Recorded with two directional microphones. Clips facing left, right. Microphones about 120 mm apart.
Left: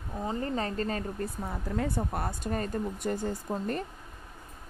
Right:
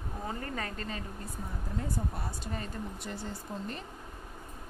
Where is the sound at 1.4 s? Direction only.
75° left (ahead or behind); by 3.8 s 50° left (ahead or behind).